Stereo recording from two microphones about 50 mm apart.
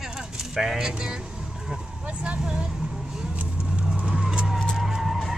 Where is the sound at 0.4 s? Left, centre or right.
Centre.